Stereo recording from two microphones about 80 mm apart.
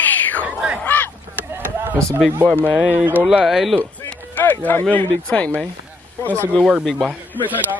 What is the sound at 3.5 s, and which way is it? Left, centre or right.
Speech, centre.